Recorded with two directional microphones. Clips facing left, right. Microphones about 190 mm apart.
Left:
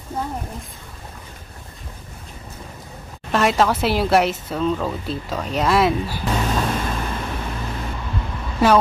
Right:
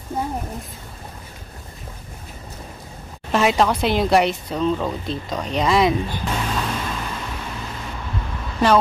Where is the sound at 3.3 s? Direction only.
Centre (ahead or behind).